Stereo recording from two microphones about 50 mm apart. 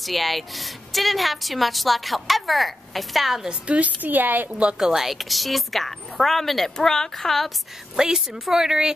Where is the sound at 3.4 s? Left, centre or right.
Right.